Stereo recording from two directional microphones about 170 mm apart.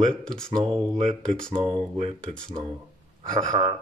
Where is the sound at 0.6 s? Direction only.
35° right (ahead or behind).